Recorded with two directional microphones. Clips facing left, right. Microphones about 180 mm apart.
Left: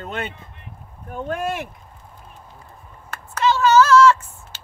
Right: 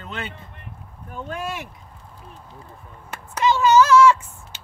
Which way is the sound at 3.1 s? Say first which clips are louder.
Even; 15° right (ahead or behind).